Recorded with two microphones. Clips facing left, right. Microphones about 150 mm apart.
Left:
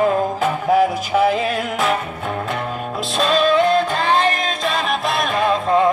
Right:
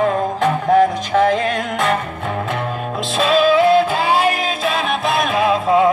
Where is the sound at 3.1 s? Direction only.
5° right (ahead or behind).